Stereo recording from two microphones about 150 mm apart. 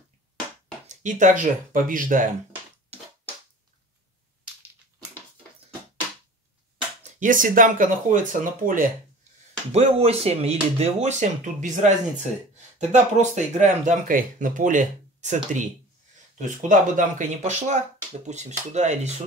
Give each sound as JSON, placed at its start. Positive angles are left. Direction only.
{"t": 0.8, "sound": "speech", "side_deg": -55}
{"t": 7.0, "sound": "speech", "side_deg": -55}
{"t": 9.7, "sound": "speech", "side_deg": -45}